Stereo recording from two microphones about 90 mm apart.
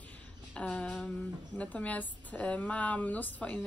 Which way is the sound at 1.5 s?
15° left (ahead or behind).